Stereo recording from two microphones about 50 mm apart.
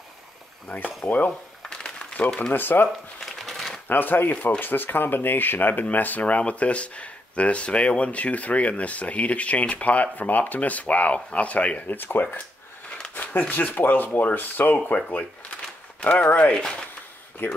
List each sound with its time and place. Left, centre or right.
1.0 s speech: left
1.6 s a sound: centre
2.1 s speech: left
2.5 s speech: left
3.2 s a sound: centre
3.8 s speech: left
12.0 s speech: left
17.4 s speech: left